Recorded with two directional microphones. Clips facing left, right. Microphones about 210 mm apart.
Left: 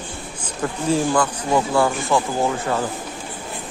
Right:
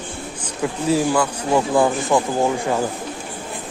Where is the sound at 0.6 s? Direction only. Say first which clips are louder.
Right 1 dB; 10° right (ahead or behind).